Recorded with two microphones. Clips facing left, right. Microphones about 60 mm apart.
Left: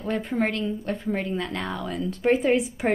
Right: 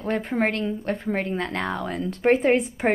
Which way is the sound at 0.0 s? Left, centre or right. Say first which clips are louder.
Right 2 dB; right.